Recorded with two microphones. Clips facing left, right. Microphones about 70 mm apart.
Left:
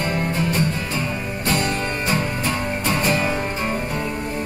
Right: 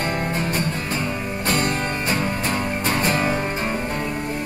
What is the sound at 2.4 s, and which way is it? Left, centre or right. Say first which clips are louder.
Music: even; right.